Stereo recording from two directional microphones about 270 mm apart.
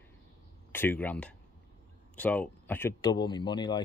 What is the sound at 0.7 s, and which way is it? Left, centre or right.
Speech, centre.